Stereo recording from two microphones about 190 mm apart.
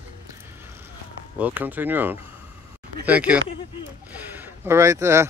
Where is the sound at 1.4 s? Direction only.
10° right (ahead or behind).